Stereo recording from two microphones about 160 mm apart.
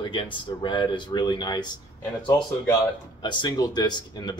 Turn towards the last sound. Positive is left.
turn(degrees=25)  # may be behind; listen again after turning